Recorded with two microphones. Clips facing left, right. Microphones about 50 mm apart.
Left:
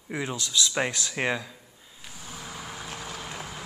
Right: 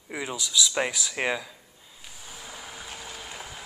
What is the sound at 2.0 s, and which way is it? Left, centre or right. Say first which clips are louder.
Vehicle: left 3 dB; centre.